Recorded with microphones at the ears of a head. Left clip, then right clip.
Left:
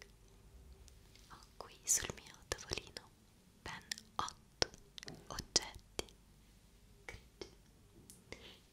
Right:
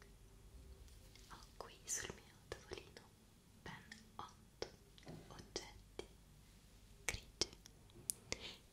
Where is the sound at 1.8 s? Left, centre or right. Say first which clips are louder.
Left 10 dB; left.